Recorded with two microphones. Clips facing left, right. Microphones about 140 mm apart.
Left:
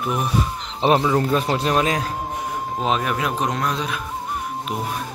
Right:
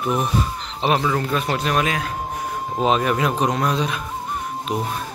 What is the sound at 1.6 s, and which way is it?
Speech, 30° left (ahead or behind).